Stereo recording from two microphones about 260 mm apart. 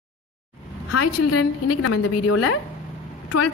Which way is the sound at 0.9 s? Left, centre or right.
Left.